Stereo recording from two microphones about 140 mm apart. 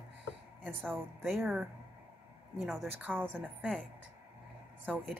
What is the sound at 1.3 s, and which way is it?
A woman's voice, 5° right (ahead or behind).